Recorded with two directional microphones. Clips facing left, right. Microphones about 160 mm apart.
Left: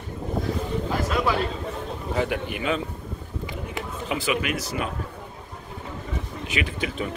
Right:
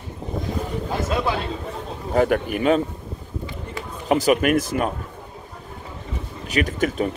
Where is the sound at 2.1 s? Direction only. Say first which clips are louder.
Right 8 dB; 45° right (ahead or behind).